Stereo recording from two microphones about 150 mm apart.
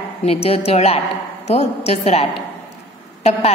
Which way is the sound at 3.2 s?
45° left (ahead or behind).